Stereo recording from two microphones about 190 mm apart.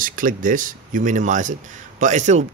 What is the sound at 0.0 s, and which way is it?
Speech, 45° right (ahead or behind).